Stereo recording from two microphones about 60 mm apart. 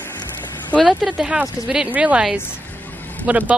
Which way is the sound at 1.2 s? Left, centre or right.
Centre.